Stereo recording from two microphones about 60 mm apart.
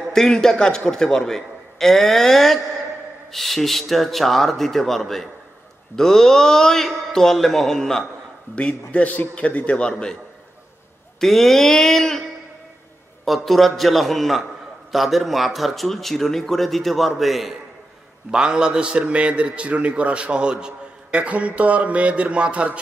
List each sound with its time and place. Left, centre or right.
0.1 s a man's voice: centre
8.5 s a man's voice: left
11.1 s a man's voice: centre
18.3 s a man's voice: centre